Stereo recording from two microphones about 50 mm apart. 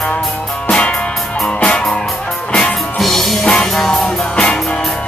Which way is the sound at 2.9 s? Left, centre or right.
Centre.